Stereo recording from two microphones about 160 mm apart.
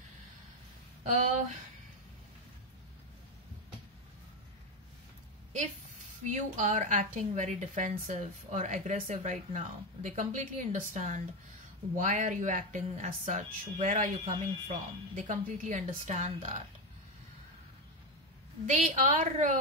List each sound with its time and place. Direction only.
1.0 s speech: 45° right (ahead or behind)
6.2 s a woman's voice: 50° right (ahead or behind)
18.7 s a woman's voice: 50° right (ahead or behind)